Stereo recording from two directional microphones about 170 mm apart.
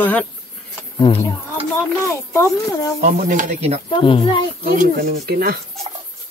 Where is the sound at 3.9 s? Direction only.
30° left (ahead or behind).